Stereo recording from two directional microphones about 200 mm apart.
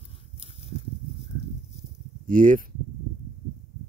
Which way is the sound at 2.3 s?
40° right (ahead or behind).